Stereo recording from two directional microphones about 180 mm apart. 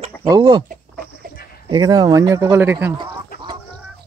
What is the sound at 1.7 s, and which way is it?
Speech, 20° right (ahead or behind).